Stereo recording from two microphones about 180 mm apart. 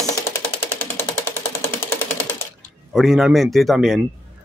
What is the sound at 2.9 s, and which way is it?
Speech, centre (ahead or behind).